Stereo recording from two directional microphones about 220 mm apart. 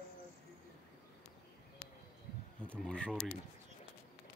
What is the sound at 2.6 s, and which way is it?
Speech, 5° left (ahead or behind).